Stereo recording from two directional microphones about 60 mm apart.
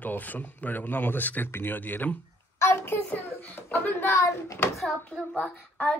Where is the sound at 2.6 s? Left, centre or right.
Left.